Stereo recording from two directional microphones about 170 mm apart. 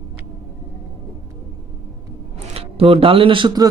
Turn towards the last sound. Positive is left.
turn(degrees=-25)  # may be behind; listen again after turning